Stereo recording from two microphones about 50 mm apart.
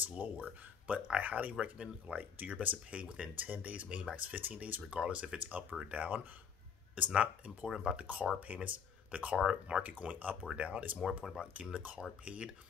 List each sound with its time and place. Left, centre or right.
0.0 s speech: right
4.8 s speech: right
7.1 s speech: centre
9.4 s speech: centre
9.8 s speech: right